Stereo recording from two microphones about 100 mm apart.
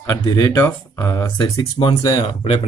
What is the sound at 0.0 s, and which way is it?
Speech, 40° left (ahead or behind).